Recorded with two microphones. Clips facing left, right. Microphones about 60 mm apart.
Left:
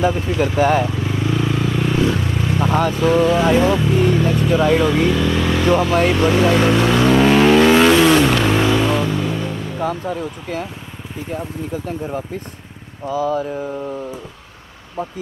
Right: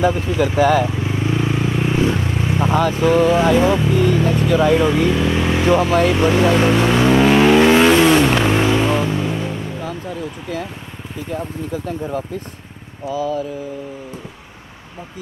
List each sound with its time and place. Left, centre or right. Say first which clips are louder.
0.1 s speech: even; centre
0.6 s speech: right 1 dB; left
0.8 s vehicle: even; centre
2.9 s speech: right 1 dB; centre
3.9 s speech: even; left
4.2 s speech: right 1 dB; centre
5.1 s speech: even; centre
6.1 s vehicle: even; centre
9.8 s a sound: left 4 dB; left
13.0 s speech: left 2 dB; left